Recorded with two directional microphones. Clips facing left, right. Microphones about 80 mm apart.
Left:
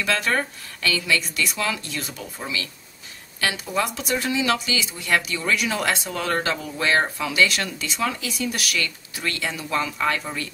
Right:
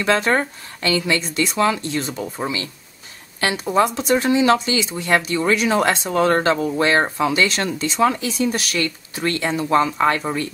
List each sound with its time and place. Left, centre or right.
0.0 s speech: right